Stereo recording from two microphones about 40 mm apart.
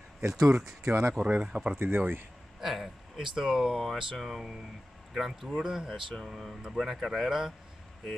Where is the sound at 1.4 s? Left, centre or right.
Right.